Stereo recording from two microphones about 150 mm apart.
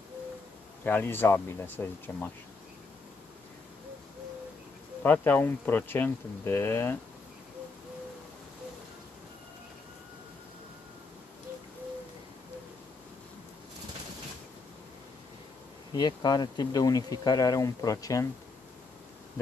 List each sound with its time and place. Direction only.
0.8 s speech: 15° left (ahead or behind)
5.0 s speech: 15° left (ahead or behind)
15.9 s speech: 30° left (ahead or behind)